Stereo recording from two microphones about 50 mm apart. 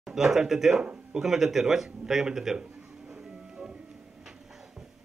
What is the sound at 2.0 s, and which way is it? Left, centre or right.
Music, centre.